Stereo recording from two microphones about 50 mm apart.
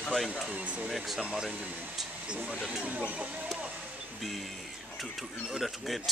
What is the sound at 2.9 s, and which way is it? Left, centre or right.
Speech, right.